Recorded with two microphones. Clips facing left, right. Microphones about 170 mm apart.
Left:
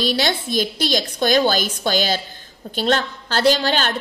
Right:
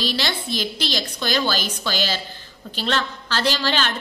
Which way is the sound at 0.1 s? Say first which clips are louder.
Left 5 dB; 50° left (ahead or behind).